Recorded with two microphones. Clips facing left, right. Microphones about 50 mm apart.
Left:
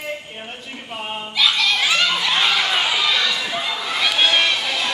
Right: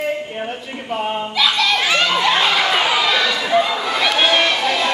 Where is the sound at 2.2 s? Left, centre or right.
Centre.